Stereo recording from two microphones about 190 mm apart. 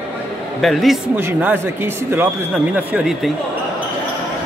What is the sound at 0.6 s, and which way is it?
A man's voice, centre (ahead or behind).